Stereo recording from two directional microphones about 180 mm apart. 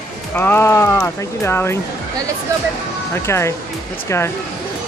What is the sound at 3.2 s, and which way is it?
Speech, 15° left (ahead or behind).